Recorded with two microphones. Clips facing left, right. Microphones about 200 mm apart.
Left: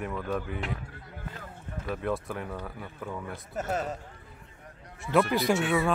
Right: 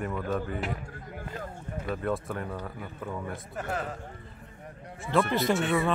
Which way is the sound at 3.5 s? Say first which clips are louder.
Left 3 dB; 20° left (ahead or behind).